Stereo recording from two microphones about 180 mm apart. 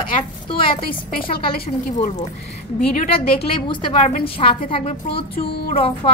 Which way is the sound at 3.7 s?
30° left (ahead or behind).